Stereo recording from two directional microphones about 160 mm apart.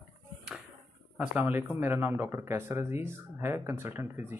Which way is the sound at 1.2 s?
10° right (ahead or behind).